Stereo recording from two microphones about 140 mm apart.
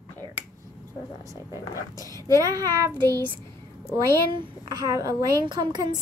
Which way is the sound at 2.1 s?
25° left (ahead or behind).